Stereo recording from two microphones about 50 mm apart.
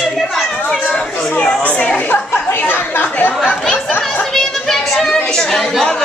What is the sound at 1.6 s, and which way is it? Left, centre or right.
Chatter, left.